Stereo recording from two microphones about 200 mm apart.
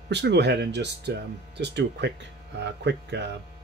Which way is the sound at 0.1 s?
60° right (ahead or behind).